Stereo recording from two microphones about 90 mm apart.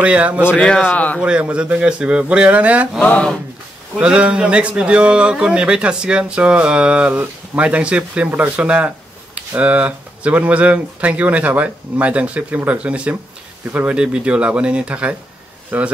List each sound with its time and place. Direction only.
0.0 s speech: 15° right (ahead or behind)
0.5 s speech: 10° left (ahead or behind)
1.2 s speech: 10° right (ahead or behind)
3.0 s speech: 15° left (ahead or behind)
4.0 s speech: 10° right (ahead or behind)